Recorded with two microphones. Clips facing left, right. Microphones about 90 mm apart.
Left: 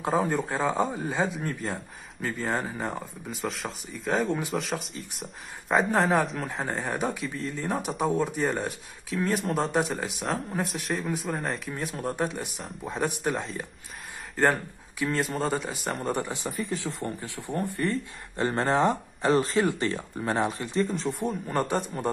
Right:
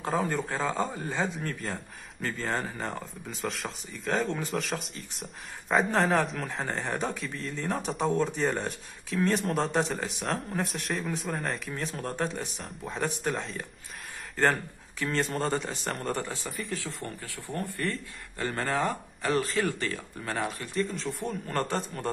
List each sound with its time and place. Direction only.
0.0 s speech: 15° left (ahead or behind)
1.6 s speech: centre (ahead or behind)
2.2 s speech: 10° left (ahead or behind)
4.6 s speech: centre (ahead or behind)
7.6 s speech: 15° left (ahead or behind)
16.4 s speech: centre (ahead or behind)
17.2 s speech: 20° left (ahead or behind)
17.6 s speech: 5° left (ahead or behind)
18.3 s speech: 25° left (ahead or behind)
20.8 s speech: centre (ahead or behind)
21.5 s speech: 15° left (ahead or behind)